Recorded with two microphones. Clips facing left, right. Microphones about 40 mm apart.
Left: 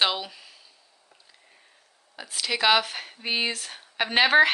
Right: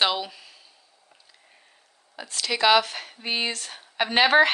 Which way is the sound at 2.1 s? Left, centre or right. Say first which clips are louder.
Right 1 dB; centre.